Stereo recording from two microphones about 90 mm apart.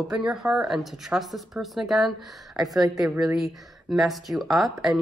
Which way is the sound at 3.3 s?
5° right (ahead or behind).